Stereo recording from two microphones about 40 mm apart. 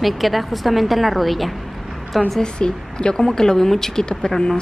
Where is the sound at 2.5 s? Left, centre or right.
Left.